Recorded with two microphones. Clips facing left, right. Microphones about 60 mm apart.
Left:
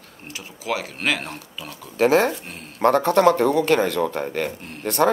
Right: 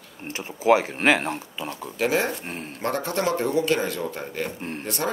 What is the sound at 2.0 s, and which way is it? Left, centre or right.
Speech, left.